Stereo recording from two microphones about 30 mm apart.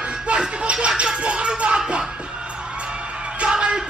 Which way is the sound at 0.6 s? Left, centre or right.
Right.